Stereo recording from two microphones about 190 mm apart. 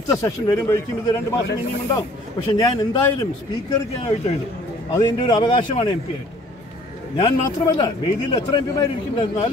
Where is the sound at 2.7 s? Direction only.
20° left (ahead or behind).